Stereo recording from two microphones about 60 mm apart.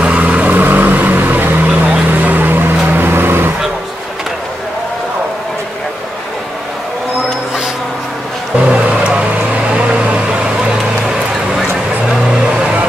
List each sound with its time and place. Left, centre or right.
0.0 s vehicle: centre; by 3.5 s right
8.5 s music: centre
9.7 s microwave oven: centre
12.3 s vehicle: centre